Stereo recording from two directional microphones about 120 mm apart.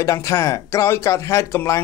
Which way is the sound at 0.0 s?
25° left (ahead or behind).